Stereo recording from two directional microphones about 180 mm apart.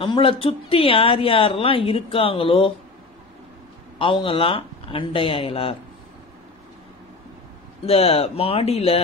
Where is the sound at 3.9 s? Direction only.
30° left (ahead or behind).